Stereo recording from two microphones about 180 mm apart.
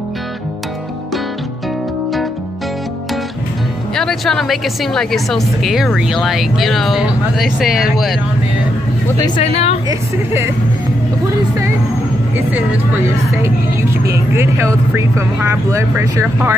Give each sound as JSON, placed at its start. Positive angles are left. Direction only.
{"t": 3.9, "sound": "a woman's voice", "side_deg": 0}
{"t": 9.0, "sound": "speech", "side_deg": 20}
{"t": 9.4, "sound": "a woman's voice", "side_deg": 35}
{"t": 9.8, "sound": "speech", "side_deg": -15}
{"t": 12.4, "sound": "speech", "side_deg": -10}